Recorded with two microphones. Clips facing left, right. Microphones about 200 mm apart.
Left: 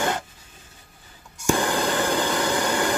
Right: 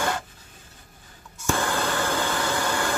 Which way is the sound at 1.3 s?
15° left (ahead or behind).